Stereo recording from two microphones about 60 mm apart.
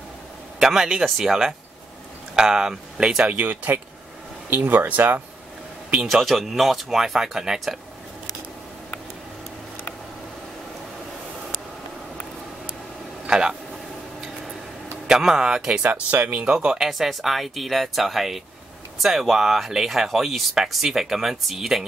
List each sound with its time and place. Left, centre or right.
0.6 s a man's voice: centre
3.3 s speech: right
5.9 s speech: centre
13.3 s speech: centre
15.0 s speech: centre
15.8 s speech: right
16.3 s speech: centre